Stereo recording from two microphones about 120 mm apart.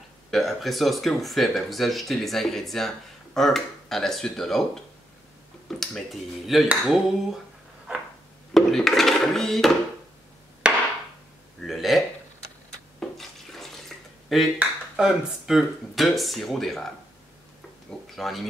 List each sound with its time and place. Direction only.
0.3 s speech: centre (ahead or behind)
5.7 s speech: 5° left (ahead or behind)
8.5 s dishes: 5° left (ahead or behind)
10.6 s hammer: 10° right (ahead or behind)
11.6 s a sound: centre (ahead or behind)
13.0 s a sound: centre (ahead or behind)
14.6 s speech: 5° right (ahead or behind)
18.1 s speech: centre (ahead or behind)